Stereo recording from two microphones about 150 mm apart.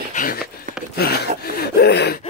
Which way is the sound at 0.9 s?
90° left.